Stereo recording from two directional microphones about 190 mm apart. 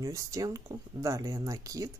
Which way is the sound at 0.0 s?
15° right (ahead or behind).